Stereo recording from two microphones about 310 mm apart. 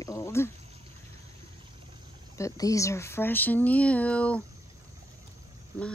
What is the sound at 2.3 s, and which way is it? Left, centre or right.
Speech, centre.